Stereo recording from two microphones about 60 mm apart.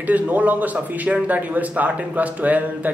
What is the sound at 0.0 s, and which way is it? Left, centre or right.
A man's voice, right.